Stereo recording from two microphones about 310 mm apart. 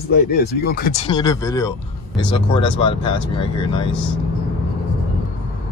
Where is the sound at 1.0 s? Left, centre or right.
Centre.